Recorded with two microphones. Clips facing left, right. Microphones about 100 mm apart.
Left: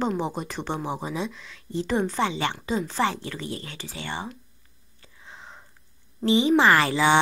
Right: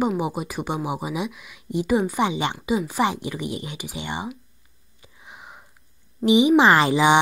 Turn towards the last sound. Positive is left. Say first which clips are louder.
# right 3 dB
turn(degrees=-15)  # may be behind; listen again after turning